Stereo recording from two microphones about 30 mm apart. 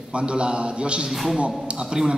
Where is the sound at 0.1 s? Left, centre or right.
Right.